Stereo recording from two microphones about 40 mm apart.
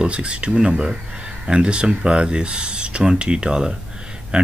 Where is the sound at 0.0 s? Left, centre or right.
Right.